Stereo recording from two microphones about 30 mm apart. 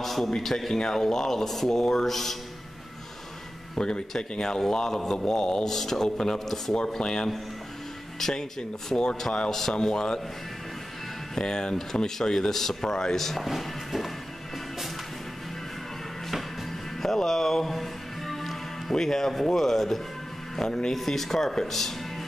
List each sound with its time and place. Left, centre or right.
0.0 s a sound: centre
0.4 s speech: centre
3.7 s a man's voice: left; by 6.8 s centre
7.0 s a man's voice: left
8.2 s speech: centre
9.8 s a man's voice: left
11.3 s a man's voice: left
13.4 s music: centre
17.0 s speech: centre
20.5 s a man's voice: centre
20.9 s speech: centre